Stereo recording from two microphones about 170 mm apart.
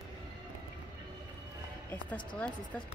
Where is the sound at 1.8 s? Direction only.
10° left (ahead or behind).